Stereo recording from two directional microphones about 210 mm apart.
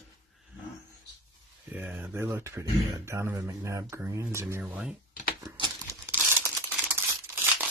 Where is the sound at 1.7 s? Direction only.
10° right (ahead or behind).